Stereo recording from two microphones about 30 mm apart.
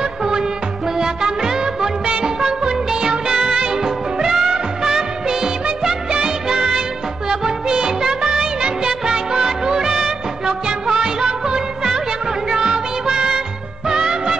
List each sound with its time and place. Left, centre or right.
0.2 s music: right
0.9 s music of bollywood: centre
3.8 s music: centre
6.2 s music of bollywood: centre
7.2 s music: right